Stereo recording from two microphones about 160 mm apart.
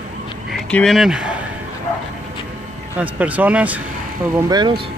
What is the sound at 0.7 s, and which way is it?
Speech, 5° left (ahead or behind).